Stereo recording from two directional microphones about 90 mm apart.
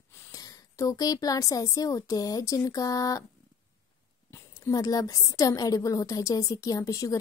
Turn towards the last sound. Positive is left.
turn(degrees=40)  # may be behind; listen again after turning